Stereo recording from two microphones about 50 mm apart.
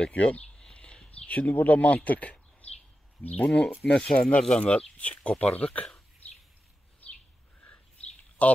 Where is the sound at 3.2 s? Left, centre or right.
Left.